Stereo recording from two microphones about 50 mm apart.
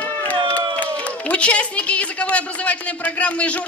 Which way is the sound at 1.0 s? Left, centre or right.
Left.